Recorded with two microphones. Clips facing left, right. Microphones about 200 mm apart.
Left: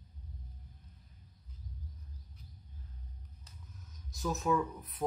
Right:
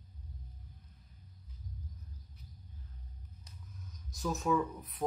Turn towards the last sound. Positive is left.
turn(degrees=0)  # may be behind; listen again after turning